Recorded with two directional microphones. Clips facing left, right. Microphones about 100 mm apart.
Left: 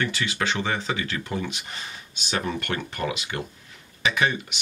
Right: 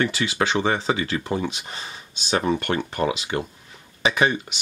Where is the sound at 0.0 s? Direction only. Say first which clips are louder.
Right 4 dB; 30° right (ahead or behind).